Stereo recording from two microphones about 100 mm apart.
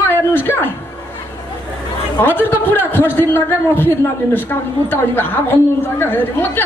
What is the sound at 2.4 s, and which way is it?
Speech, 20° left (ahead or behind).